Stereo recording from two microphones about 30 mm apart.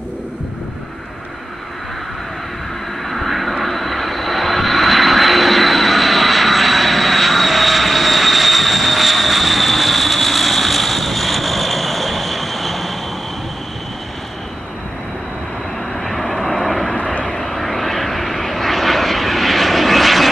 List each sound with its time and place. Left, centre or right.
3.1 s vehicle: centre
16.0 s vehicle: centre
16.9 s vehicle: left
17.2 s vehicle: left
17.5 s vehicle: centre